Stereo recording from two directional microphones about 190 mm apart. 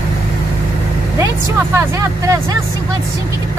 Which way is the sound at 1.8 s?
15° right (ahead or behind).